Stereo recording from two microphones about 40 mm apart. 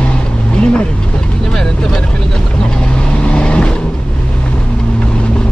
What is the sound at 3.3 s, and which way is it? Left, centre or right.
Vehicle, left.